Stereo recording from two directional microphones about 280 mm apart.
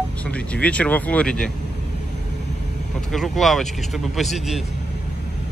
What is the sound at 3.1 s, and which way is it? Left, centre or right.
Speech, centre.